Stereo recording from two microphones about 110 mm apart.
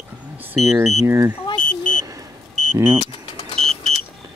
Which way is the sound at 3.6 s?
5° left (ahead or behind).